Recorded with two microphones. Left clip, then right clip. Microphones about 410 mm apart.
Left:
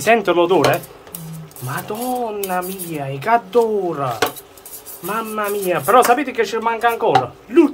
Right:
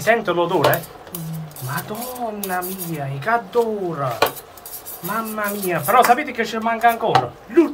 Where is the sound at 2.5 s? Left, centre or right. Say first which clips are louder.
Left 2 dB; left.